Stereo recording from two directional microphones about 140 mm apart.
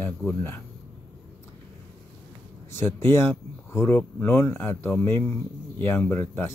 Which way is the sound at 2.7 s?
20° left (ahead or behind).